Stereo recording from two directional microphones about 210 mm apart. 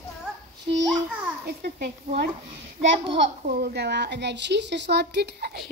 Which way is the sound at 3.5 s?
45° right (ahead or behind).